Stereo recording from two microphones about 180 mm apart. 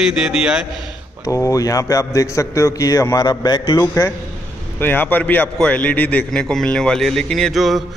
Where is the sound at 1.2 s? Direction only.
20° left (ahead or behind).